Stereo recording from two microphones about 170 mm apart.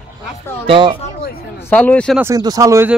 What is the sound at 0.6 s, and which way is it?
Speech, 30° right (ahead or behind).